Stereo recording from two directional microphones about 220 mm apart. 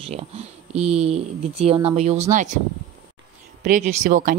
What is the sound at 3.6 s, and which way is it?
Speech, 35° right (ahead or behind).